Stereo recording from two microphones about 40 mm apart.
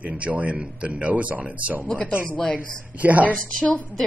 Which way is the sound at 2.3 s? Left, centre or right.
Left.